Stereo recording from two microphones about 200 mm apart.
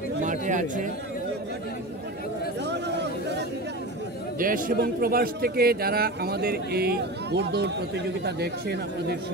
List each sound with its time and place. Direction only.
0.2 s speech: 40° right (ahead or behind)
2.6 s chatter: 60° right (ahead or behind)
4.4 s a man's voice: 45° right (ahead or behind)